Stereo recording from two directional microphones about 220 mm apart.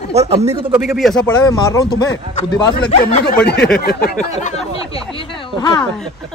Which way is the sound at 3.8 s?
45° left (ahead or behind).